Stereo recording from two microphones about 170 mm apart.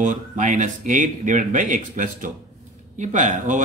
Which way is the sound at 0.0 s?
45° right (ahead or behind).